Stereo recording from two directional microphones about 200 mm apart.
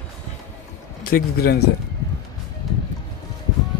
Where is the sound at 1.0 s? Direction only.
50° left (ahead or behind).